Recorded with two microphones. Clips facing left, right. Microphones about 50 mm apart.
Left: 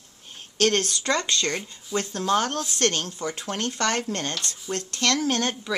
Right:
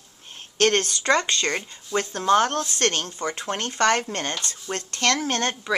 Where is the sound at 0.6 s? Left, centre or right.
Right.